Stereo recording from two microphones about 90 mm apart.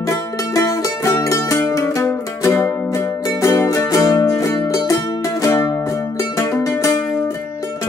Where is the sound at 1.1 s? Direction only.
35° left (ahead or behind).